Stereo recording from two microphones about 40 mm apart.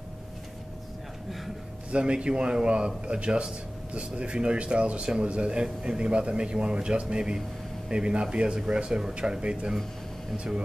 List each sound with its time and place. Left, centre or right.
1.9 s speech: right
9.4 s speech: right